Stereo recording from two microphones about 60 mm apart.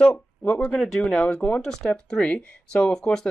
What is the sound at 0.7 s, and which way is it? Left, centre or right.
Speech, centre.